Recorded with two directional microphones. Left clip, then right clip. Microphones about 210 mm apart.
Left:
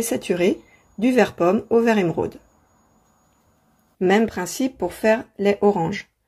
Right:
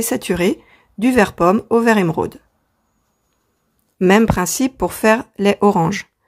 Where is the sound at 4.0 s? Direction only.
35° right (ahead or behind).